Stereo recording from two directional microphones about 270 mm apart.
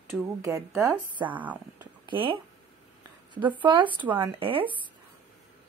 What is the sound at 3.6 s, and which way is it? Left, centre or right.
Speech, centre.